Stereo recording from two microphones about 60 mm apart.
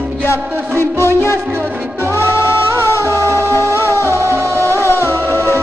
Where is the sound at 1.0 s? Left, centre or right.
Left.